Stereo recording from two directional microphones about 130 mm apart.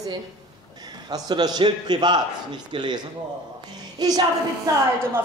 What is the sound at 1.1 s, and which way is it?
A man's voice, 30° right (ahead or behind).